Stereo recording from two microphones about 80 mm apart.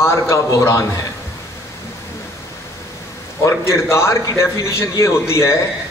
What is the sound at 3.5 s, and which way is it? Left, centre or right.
A man's voice, left.